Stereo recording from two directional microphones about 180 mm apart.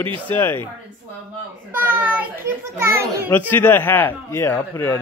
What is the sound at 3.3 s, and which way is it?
A man's voice, 10° left (ahead or behind).